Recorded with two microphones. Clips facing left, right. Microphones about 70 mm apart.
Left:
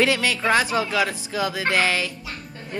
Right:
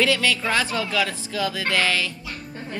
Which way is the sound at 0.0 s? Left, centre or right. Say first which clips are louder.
Left 1 dB; left.